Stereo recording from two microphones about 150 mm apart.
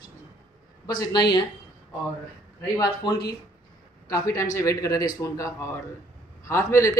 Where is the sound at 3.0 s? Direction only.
30° left (ahead or behind).